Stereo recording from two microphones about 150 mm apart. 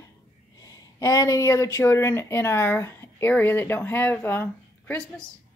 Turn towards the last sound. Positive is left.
turn(degrees=15)  # may be behind; listen again after turning